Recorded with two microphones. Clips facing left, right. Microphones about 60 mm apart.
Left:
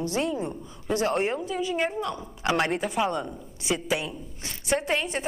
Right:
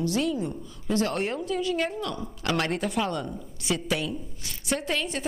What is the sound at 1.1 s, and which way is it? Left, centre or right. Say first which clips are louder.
Speech: left 2 dB; centre.